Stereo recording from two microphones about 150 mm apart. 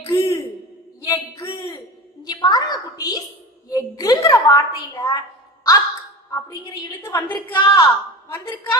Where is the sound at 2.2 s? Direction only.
25° left (ahead or behind).